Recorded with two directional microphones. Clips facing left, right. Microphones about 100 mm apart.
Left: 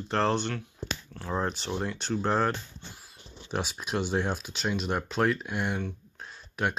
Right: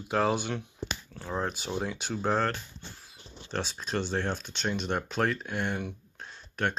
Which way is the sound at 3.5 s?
10° left (ahead or behind).